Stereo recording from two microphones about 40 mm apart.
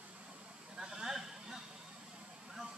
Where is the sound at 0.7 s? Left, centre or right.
Centre.